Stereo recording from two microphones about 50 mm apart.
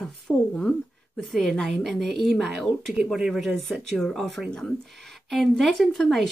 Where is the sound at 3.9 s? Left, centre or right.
Centre.